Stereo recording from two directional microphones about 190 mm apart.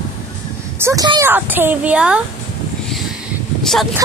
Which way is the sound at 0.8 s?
20° right (ahead or behind).